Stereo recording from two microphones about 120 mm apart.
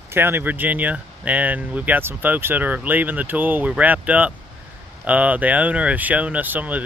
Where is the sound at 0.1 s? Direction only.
20° right (ahead or behind).